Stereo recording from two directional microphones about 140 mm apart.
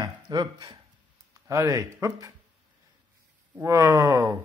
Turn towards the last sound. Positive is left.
turn(degrees=-20)  # may be behind; listen again after turning